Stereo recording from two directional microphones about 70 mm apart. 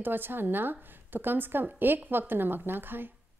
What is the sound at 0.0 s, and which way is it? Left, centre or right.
A woman's voice, right.